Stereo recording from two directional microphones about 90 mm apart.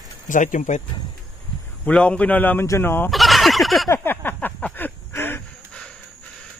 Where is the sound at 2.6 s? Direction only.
30° left (ahead or behind).